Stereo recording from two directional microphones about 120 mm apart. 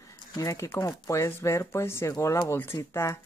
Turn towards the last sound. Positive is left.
turn(degrees=20)  # may be behind; listen again after turning